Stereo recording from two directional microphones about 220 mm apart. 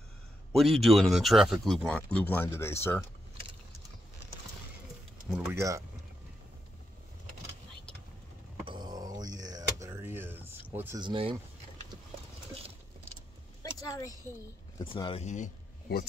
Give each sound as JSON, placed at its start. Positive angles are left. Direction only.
{"t": 0.5, "sound": "speech", "side_deg": 0}
{"t": 5.3, "sound": "speech", "side_deg": -10}
{"t": 8.6, "sound": "a sound", "side_deg": -20}
{"t": 10.7, "sound": "speech", "side_deg": -10}
{"t": 11.0, "sound": "speech", "side_deg": -20}
{"t": 13.6, "sound": "a sound", "side_deg": 15}
{"t": 14.8, "sound": "speech", "side_deg": 20}